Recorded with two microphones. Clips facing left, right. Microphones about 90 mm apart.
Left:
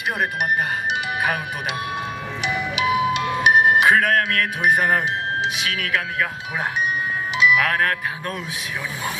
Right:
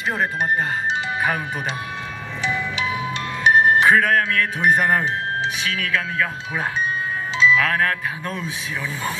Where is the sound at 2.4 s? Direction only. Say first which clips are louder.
Left 1 dB; 15° left (ahead or behind).